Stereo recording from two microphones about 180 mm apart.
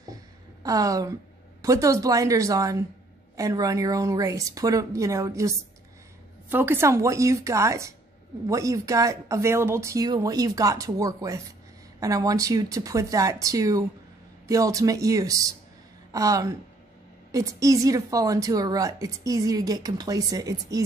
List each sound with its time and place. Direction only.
0.7 s a woman's voice: 20° right (ahead or behind)